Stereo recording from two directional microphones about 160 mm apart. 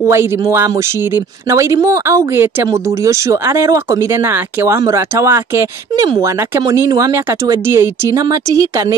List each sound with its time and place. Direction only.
0.0 s speech: 15° right (ahead or behind)